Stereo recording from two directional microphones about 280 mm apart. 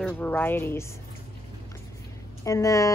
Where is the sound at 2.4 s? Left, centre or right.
Centre.